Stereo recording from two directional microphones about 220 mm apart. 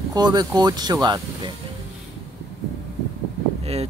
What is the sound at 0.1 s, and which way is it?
Speech, 15° right (ahead or behind).